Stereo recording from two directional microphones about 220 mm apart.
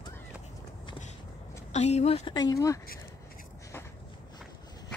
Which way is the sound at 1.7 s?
30° left (ahead or behind).